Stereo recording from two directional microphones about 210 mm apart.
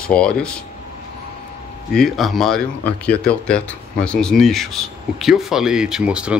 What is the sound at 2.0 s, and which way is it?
Speech, centre (ahead or behind).